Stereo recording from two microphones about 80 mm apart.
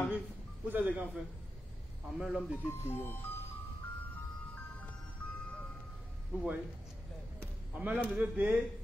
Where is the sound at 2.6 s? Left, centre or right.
Left.